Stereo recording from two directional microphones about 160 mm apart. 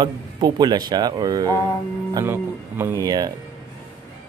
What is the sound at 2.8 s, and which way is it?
Speech, 20° right (ahead or behind).